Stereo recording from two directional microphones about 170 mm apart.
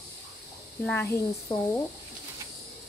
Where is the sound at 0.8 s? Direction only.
10° left (ahead or behind).